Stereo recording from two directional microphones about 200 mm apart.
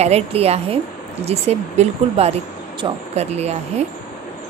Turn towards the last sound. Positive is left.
turn(degrees=-30)  # may be behind; listen again after turning